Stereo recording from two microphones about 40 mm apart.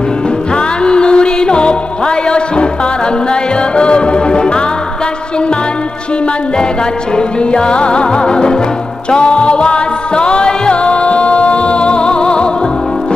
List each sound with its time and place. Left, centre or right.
0.8 s music: left
3.7 s music: left
7.2 s music: left